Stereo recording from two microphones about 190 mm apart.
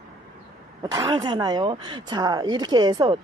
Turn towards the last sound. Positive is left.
turn(degrees=-20)  # may be behind; listen again after turning